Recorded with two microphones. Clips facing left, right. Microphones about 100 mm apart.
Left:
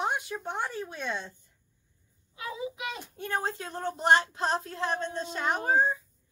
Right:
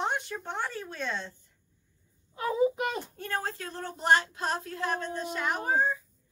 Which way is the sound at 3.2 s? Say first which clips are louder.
Left 5 dB; 20° left (ahead or behind).